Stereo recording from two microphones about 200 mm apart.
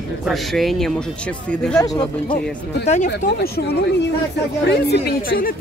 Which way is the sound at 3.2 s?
50° left (ahead or behind).